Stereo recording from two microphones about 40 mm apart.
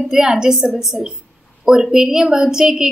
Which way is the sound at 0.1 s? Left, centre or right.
Centre.